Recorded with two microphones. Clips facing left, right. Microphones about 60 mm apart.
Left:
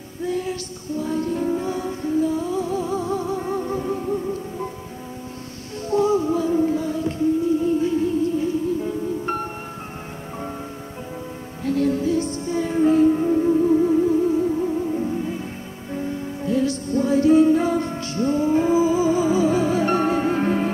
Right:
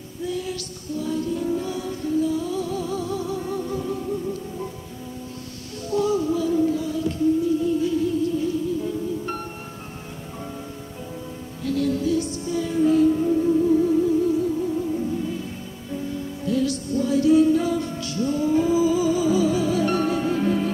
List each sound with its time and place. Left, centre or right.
0.3 s music: left
5.9 s music: left
11.6 s music: left